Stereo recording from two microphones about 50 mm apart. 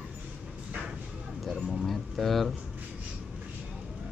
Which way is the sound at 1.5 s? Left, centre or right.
Centre.